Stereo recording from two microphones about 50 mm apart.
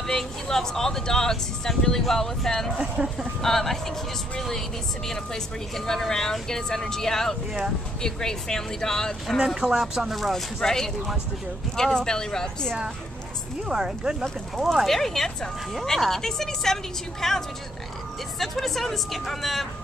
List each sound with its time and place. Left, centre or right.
0.0 s speech: centre
3.0 s speech: centre
3.4 s speech: centre
9.6 s speech: centre
10.1 s speech: centre
13.7 s speech: centre
14.9 s speech: centre
18.4 s speech: centre